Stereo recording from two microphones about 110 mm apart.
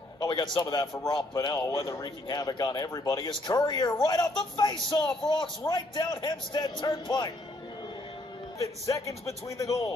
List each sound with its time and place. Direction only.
0.2 s speech: 40° left (ahead or behind)
3.2 s a man's voice: 45° left (ahead or behind)
8.8 s a man's voice: 30° left (ahead or behind)